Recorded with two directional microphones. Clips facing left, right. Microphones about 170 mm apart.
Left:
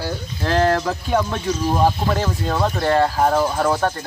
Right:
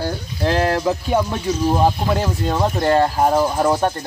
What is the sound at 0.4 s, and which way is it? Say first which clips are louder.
Speech: even; 15° right (ahead or behind).